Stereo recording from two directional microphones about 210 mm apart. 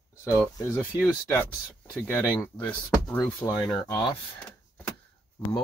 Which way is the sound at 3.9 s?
20° left (ahead or behind).